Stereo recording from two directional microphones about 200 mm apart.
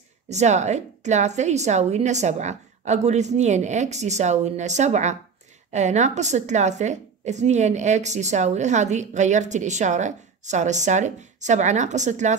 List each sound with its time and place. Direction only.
0.3 s a woman's voice: 35° right (ahead or behind)